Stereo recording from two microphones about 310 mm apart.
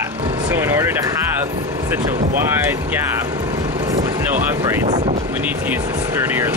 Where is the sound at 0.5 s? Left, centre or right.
Centre.